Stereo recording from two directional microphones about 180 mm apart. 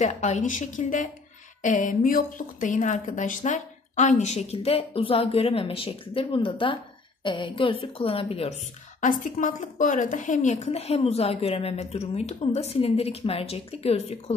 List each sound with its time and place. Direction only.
0.0 s a woman's voice: 40° left (ahead or behind)
9.2 s a woman's voice: 45° left (ahead or behind)